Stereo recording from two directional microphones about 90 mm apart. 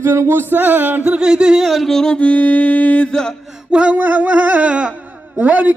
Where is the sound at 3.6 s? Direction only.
10° right (ahead or behind).